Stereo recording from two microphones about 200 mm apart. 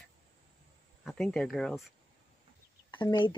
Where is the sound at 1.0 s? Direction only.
Centre (ahead or behind).